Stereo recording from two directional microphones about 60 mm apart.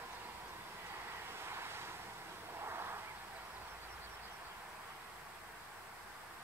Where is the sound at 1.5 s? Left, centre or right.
Right.